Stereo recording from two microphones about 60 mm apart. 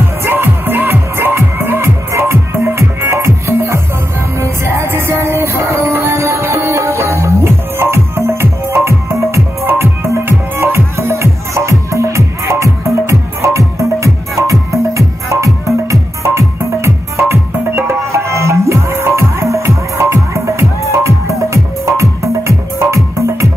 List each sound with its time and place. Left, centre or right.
0.2 s music: right
2.1 s music: right